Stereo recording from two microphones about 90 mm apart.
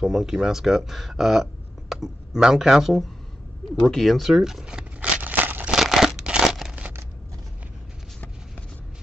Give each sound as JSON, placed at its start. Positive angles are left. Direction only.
{"t": 0.0, "sound": "speech", "side_deg": -5}
{"t": 3.8, "sound": "crumpling", "side_deg": 5}
{"t": 5.8, "sound": "tearing", "side_deg": -5}
{"t": 6.7, "sound": "scissors", "side_deg": -15}